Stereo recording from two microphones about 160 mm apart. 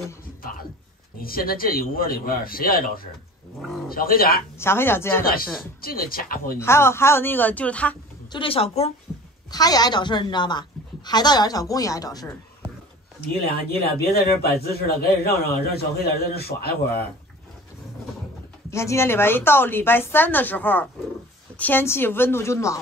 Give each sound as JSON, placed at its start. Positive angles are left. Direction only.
{"t": 0.4, "sound": "music", "side_deg": 65}
{"t": 1.2, "sound": "a man's voice", "side_deg": 65}
{"t": 4.6, "sound": "a woman's voice", "side_deg": 15}
{"t": 5.2, "sound": "a man's voice", "side_deg": 65}
{"t": 6.6, "sound": "a woman's voice", "side_deg": 15}
{"t": 8.3, "sound": "a woman's voice", "side_deg": 35}
{"t": 9.5, "sound": "a woman's voice", "side_deg": 25}
{"t": 13.4, "sound": "a man's voice", "side_deg": 75}
{"t": 18.7, "sound": "a woman's voice", "side_deg": 15}